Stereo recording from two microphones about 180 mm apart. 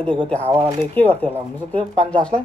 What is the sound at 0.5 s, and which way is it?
Speech, 30° right (ahead or behind).